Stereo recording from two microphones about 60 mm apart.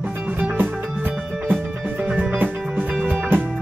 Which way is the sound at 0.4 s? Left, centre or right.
Right.